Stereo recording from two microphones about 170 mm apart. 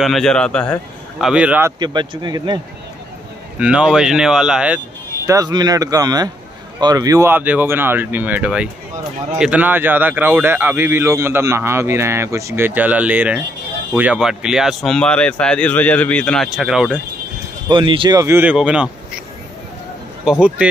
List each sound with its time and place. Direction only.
0.0 s speech: centre (ahead or behind)
1.2 s speech: 5° right (ahead or behind)
1.8 s speech: 25° right (ahead or behind)
3.5 s speech: 5° right (ahead or behind)
5.2 s speech: 20° right (ahead or behind); by 17.0 s 5° right (ahead or behind)
17.6 s speech: 30° right (ahead or behind); by 19.2 s 5° right (ahead or behind)
20.2 s speech: 5° right (ahead or behind)